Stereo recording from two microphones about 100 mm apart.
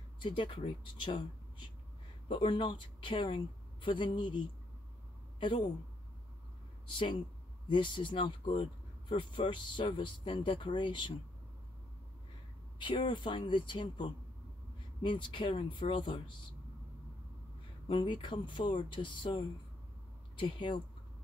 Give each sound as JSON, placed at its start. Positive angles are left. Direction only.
{"t": 0.2, "sound": "speech", "side_deg": 55}
{"t": 7.6, "sound": "speech", "side_deg": 55}
{"t": 12.7, "sound": "speech", "side_deg": 55}
{"t": 17.8, "sound": "speech", "side_deg": 55}